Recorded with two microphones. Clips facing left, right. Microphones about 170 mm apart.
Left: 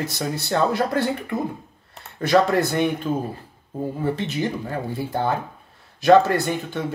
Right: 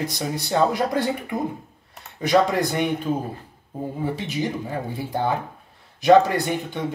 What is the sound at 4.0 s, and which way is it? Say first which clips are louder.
Speech: left 1 dB; 10° right (ahead or behind).